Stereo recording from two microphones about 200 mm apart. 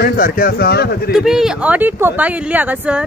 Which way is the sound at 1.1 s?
Centre (ahead or behind).